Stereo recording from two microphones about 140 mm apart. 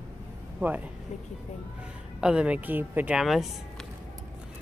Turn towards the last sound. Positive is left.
turn(degrees=0)  # may be behind; listen again after turning